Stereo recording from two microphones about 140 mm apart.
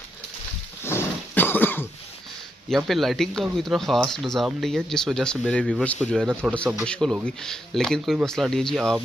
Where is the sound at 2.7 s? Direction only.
Centre (ahead or behind).